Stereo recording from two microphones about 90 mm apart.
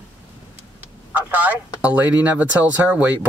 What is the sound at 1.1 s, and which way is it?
Speech, 20° right (ahead or behind).